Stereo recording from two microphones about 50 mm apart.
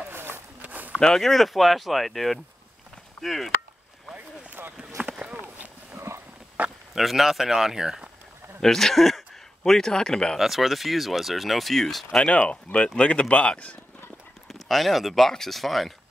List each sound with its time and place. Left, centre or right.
0.1 s run: right
0.6 s walk: right
1.0 s speech: centre
4.1 s boat: right
4.7 s a sound: centre
5.9 s horse: right
6.6 s a sound: right
7.0 s speech: centre
8.5 s speech: centre
10.3 s speech: centre
12.2 s speech: left
14.5 s speech: centre